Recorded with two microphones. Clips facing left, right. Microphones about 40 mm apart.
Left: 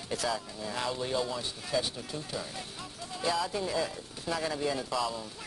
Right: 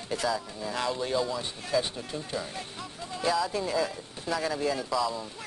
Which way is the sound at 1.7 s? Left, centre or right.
Centre.